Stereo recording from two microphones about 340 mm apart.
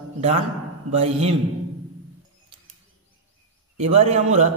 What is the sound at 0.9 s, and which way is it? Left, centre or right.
Speech, centre.